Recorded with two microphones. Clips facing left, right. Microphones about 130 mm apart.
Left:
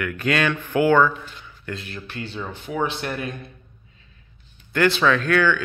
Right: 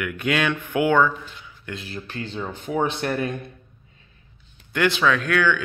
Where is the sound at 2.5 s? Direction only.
35° right (ahead or behind).